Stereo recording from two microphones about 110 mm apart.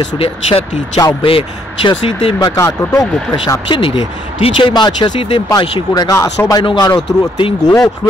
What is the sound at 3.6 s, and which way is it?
Speech, 50° left (ahead or behind).